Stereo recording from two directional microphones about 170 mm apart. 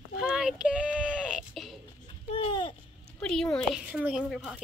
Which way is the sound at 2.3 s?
30° left (ahead or behind).